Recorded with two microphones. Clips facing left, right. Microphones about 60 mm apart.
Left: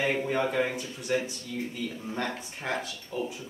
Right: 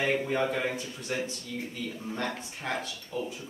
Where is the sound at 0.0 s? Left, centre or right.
Centre.